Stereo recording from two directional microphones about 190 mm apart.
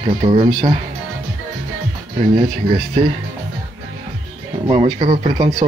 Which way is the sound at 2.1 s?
35° right (ahead or behind).